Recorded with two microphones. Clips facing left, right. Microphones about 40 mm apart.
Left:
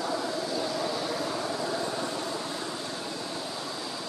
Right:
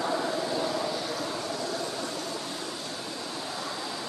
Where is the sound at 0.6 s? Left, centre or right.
Centre.